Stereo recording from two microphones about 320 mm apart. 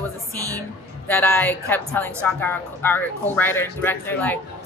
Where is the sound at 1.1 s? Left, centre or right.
Centre.